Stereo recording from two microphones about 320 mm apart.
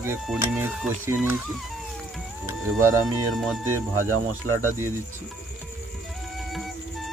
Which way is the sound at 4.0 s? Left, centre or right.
Right.